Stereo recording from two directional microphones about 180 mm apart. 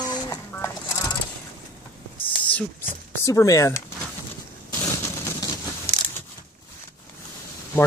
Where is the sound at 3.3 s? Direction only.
20° left (ahead or behind).